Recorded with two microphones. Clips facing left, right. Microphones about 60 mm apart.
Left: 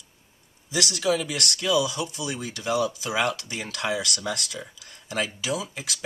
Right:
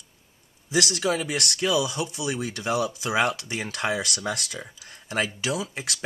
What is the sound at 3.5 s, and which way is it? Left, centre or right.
Speech, right.